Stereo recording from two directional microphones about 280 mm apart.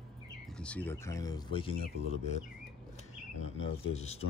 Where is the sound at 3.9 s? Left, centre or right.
Left.